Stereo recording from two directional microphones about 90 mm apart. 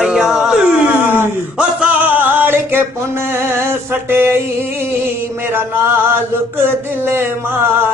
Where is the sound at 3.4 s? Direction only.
25° right (ahead or behind).